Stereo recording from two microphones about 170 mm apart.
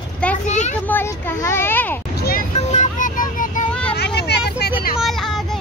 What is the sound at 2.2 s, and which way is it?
Vehicle, 60° left (ahead or behind).